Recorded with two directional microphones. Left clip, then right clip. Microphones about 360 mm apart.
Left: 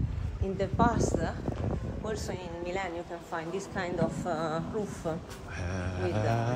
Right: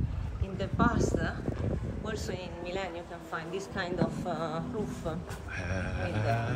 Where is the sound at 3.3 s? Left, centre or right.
Left.